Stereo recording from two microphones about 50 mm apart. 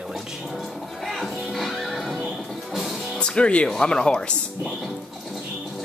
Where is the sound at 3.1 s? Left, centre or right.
Centre.